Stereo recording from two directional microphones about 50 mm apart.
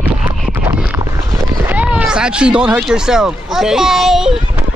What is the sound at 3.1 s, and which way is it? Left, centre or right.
Speech, centre.